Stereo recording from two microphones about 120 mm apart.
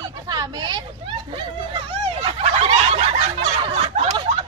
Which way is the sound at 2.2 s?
60° right (ahead or behind).